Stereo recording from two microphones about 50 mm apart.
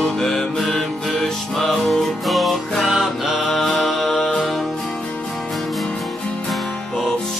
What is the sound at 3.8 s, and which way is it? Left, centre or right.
Music, centre.